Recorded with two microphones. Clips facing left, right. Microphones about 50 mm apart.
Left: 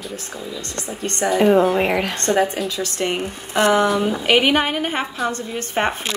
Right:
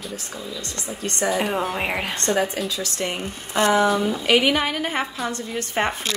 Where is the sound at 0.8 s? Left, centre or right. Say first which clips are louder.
Left 2 dB; left.